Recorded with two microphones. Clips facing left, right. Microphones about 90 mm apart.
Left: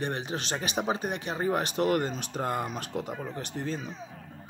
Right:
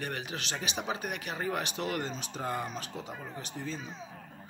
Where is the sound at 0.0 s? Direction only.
30° left (ahead or behind); by 3.9 s 60° left (ahead or behind).